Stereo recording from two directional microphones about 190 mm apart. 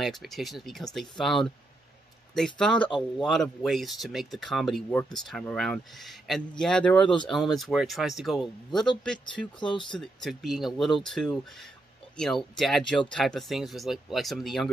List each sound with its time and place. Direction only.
0.0 s speech: centre (ahead or behind)
9.6 s speech: 25° left (ahead or behind)
9.8 s speech: centre (ahead or behind)